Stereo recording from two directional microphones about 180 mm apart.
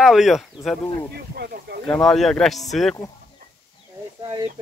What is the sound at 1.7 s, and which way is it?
Speech, 65° right (ahead or behind).